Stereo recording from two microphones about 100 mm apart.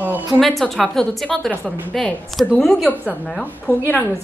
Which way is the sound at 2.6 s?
Centre (ahead or behind).